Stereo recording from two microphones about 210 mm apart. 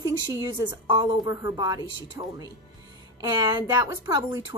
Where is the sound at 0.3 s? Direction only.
15° right (ahead or behind).